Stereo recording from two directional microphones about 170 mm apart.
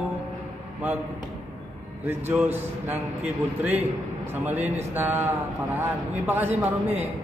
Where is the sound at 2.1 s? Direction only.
10° right (ahead or behind).